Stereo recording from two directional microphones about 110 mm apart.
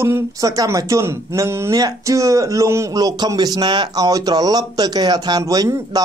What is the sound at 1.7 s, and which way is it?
Speech, 30° right (ahead or behind).